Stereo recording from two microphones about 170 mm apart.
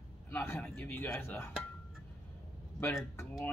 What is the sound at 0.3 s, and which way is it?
Speech, 10° left (ahead or behind).